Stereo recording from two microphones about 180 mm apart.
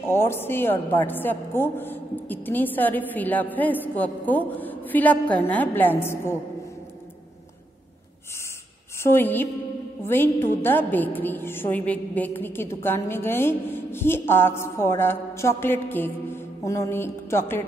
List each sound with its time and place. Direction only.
0.0 s a woman's voice: 15° left (ahead or behind)
9.0 s a woman's voice: 10° left (ahead or behind)